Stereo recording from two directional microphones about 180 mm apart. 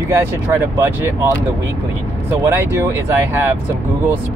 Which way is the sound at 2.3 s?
10° right (ahead or behind).